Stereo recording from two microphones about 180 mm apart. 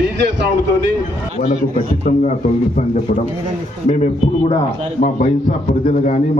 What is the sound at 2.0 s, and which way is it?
Speech, 40° left (ahead or behind).